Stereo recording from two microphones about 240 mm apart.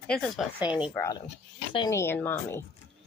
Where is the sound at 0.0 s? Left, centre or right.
Centre.